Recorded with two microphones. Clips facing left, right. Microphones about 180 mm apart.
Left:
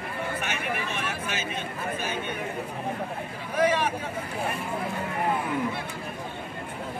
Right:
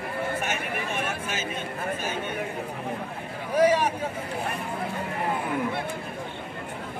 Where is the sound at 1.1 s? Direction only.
45° right (ahead or behind).